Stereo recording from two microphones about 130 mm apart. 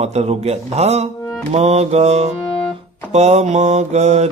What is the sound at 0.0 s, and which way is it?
Music, 55° right (ahead or behind).